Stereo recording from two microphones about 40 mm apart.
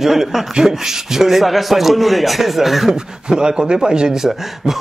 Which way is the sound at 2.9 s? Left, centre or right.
Centre.